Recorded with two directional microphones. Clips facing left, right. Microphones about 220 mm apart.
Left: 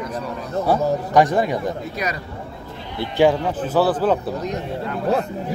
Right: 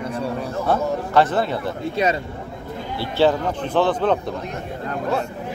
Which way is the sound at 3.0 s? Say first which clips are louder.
Left 2 dB; 15° left (ahead or behind).